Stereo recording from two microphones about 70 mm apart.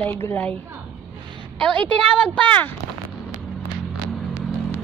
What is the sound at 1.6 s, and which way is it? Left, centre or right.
A woman's voice, centre.